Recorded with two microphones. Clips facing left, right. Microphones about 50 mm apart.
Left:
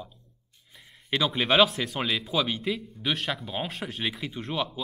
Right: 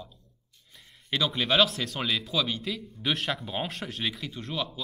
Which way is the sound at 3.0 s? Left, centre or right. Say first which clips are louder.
Even; centre.